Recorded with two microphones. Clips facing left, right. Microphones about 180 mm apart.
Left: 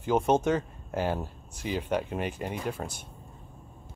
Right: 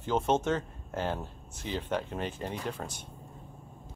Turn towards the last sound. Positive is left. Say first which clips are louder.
# left 3 dB
turn(degrees=10)  # may be behind; listen again after turning